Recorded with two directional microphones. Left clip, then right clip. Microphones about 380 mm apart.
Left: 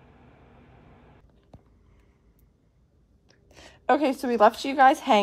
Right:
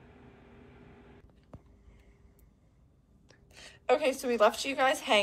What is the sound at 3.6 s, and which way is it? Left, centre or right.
A woman's voice, centre.